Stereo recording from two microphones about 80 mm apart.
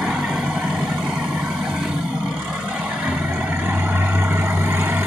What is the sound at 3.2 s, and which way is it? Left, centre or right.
Vehicle, right.